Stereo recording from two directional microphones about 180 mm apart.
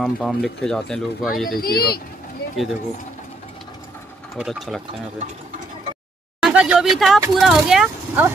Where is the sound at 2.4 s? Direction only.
65° left (ahead or behind).